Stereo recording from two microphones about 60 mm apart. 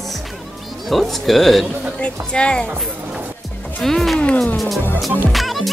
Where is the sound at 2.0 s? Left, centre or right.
Centre.